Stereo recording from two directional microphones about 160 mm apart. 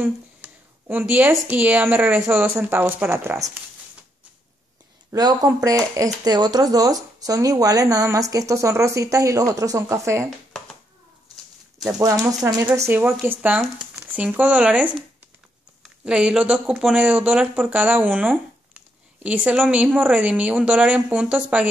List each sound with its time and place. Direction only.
0.0 s a sound: 15° right (ahead or behind)
1.5 s speech: 10° right (ahead or behind)
5.1 s speech: 25° right (ahead or behind)
12.3 s speech: 20° right (ahead or behind)